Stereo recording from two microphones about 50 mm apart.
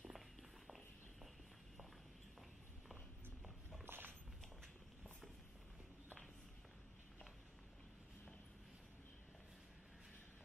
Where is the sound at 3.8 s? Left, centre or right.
Right.